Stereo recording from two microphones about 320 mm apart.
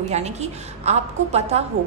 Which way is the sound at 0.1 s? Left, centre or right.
Right.